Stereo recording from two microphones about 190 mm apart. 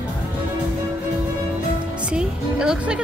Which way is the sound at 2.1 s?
5° right (ahead or behind).